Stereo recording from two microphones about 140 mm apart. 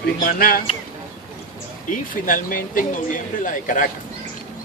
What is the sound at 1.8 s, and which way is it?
Speech, 75° left (ahead or behind).